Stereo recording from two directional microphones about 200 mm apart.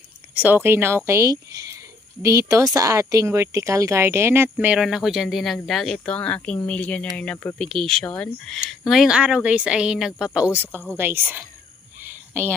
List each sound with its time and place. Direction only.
0.3 s speech: 10° right (ahead or behind)